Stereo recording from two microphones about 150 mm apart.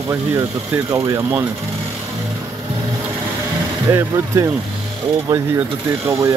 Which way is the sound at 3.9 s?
20° right (ahead or behind).